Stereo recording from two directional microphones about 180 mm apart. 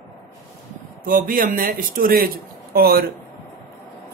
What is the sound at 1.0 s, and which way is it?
Speech, 50° right (ahead or behind).